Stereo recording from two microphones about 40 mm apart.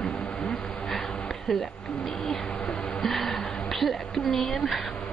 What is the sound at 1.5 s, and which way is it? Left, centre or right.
Speech, centre.